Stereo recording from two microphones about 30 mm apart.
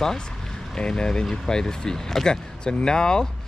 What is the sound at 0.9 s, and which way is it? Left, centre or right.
Speech, left.